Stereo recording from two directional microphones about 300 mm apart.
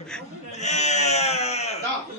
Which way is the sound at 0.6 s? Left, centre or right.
Left.